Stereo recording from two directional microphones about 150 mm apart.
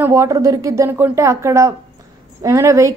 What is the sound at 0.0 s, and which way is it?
A woman's voice, 20° right (ahead or behind).